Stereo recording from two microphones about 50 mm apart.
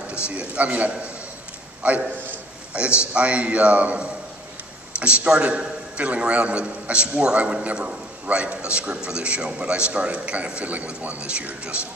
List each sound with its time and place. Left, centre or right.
0.3 s a man's voice: right